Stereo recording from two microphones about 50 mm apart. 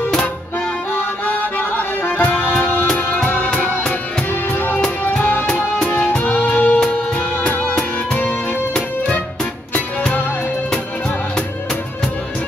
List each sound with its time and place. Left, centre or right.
0.9 s music: left
6.1 s music: left